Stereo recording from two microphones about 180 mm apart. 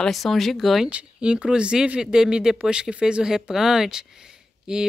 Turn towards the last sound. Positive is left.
turn(degrees=-5)  # may be behind; listen again after turning